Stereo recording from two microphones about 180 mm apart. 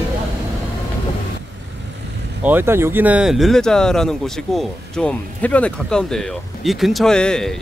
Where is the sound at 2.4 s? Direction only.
10° right (ahead or behind).